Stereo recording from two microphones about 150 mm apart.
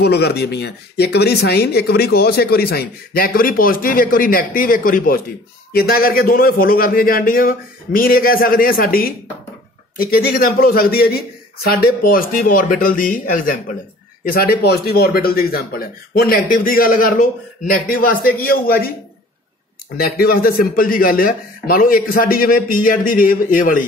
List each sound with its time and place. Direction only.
0.0 s speech: 90° left; by 5.2 s 70° left (ahead or behind)
5.7 s speech: 90° left; by 13.6 s 65° left (ahead or behind)
14.2 s speech: 85° left
20.2 s speech: 80° left